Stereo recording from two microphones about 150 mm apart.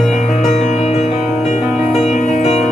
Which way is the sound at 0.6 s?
50° left (ahead or behind).